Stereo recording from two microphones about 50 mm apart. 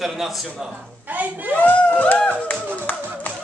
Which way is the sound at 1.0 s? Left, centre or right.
Right.